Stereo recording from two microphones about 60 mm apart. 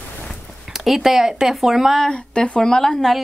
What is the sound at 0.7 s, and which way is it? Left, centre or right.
Speech, centre.